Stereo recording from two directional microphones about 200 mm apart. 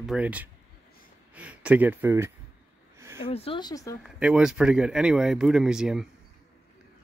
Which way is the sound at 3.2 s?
30° left (ahead or behind).